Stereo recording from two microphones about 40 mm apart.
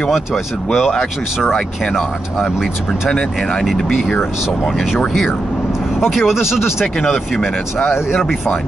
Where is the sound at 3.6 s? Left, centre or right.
Centre.